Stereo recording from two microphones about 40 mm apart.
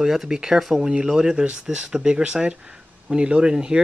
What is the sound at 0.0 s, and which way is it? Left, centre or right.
Speech, centre.